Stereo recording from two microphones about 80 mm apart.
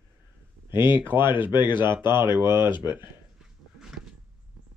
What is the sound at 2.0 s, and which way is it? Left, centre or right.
Speech, left.